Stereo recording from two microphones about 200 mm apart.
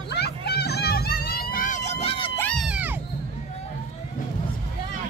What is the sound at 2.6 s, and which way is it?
Music, 5° right (ahead or behind).